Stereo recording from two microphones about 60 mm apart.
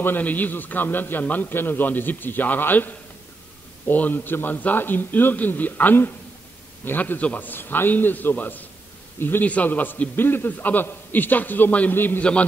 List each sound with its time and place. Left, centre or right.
0.0 s a man's voice: left
12.2 s a man's voice: left